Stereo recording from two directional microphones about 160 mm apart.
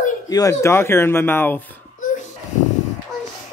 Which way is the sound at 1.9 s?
55° left (ahead or behind).